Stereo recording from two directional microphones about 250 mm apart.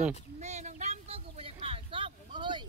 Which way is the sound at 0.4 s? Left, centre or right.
Right.